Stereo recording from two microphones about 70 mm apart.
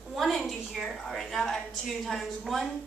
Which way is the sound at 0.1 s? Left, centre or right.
Centre.